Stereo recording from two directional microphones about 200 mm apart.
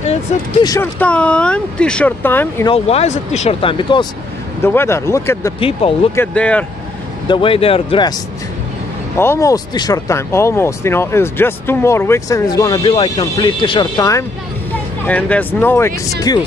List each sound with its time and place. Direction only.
0.6 s speech: 15° left (ahead or behind)
2.7 s speech: 30° left (ahead or behind)
4.6 s speech: 10° left (ahead or behind)
5.6 s speech: 25° left (ahead or behind)
6.1 s speech: 5° left (ahead or behind)
7.2 s speech: 25° left (ahead or behind)
9.1 s speech: 10° left (ahead or behind)